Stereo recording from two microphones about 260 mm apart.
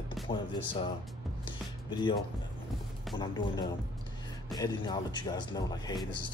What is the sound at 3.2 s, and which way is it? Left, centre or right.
Speech, centre.